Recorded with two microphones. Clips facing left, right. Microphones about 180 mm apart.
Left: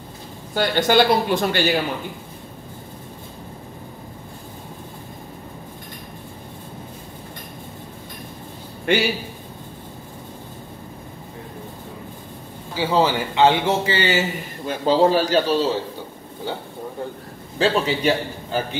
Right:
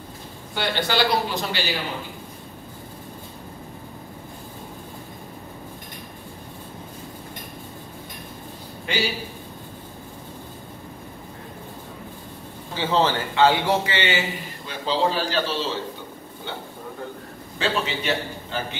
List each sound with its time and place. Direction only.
0.6 s speech: 45° left (ahead or behind)
8.9 s a man's voice: 55° left (ahead or behind)
12.7 s a man's voice: 10° left (ahead or behind)
13.9 s a man's voice: 35° left (ahead or behind)
17.6 s a man's voice: 40° left (ahead or behind)